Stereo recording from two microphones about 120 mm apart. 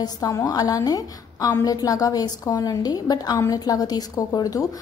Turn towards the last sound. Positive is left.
turn(degrees=30)  # may be behind; listen again after turning